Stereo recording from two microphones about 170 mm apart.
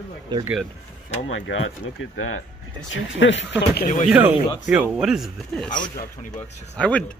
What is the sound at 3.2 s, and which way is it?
Speech, 90° left.